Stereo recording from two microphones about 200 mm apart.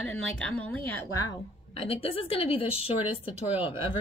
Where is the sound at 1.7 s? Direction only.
30° left (ahead or behind).